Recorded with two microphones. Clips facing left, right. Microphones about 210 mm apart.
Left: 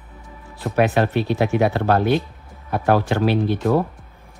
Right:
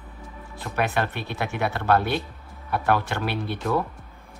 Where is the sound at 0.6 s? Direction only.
45° left (ahead or behind).